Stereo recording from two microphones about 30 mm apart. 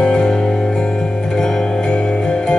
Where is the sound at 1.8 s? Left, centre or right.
Left.